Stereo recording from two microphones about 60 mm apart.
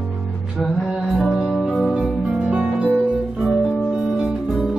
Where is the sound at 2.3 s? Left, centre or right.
Centre.